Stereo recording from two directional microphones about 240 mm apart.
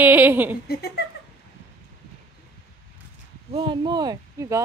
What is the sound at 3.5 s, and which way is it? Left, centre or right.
Speech, centre.